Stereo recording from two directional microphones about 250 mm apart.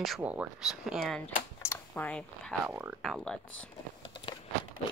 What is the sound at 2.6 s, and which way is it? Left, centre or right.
Speech, centre.